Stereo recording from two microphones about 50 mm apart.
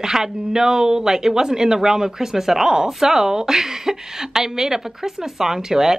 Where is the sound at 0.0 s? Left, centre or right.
Centre.